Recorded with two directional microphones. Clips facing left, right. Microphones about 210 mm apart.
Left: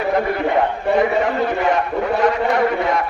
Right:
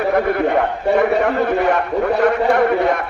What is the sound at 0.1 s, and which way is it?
A man's voice, 60° right (ahead or behind).